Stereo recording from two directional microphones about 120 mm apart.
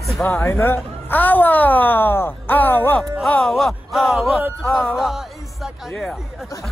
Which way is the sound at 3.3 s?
5° left (ahead or behind).